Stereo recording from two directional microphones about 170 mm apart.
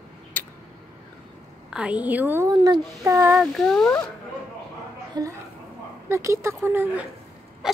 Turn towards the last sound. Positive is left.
turn(degrees=-5)  # may be behind; listen again after turning